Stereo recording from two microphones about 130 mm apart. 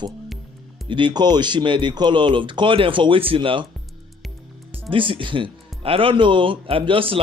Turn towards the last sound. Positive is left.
turn(degrees=-45)  # may be behind; listen again after turning